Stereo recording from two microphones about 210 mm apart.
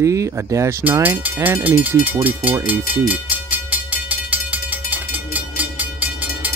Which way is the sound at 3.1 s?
5° right (ahead or behind).